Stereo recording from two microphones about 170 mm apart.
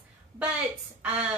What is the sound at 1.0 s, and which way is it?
Speech, 5° right (ahead or behind).